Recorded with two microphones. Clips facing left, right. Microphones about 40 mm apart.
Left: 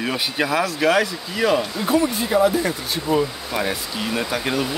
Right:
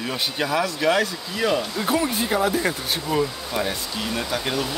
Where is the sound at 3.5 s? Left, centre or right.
Left.